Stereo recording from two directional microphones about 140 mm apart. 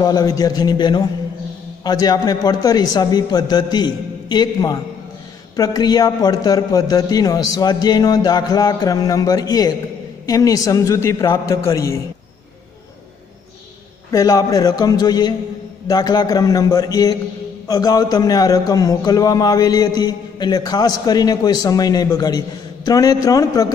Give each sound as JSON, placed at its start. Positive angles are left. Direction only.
{"t": 0.0, "sound": "a man's voice", "side_deg": 30}
{"t": 14.1, "sound": "a man's voice", "side_deg": 25}